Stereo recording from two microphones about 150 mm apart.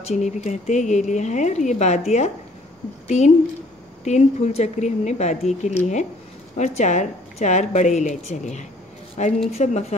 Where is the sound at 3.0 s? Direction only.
50° left (ahead or behind).